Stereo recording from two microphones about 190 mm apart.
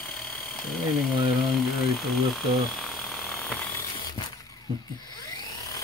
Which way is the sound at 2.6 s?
Centre (ahead or behind).